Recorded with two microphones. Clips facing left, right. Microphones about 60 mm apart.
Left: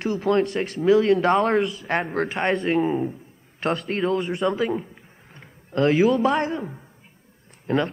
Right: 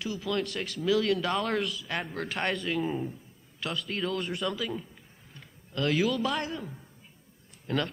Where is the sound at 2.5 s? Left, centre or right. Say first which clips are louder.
Left 9 dB; left.